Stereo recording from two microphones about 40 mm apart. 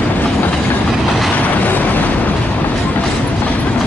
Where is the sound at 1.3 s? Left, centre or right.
Left.